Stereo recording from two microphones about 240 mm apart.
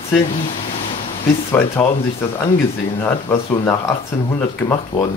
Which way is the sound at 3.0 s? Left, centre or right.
Centre.